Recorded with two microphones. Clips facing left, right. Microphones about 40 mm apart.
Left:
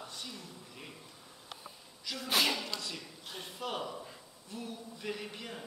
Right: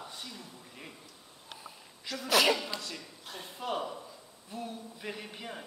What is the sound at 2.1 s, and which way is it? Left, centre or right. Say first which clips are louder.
Speech: right 5 dB; right.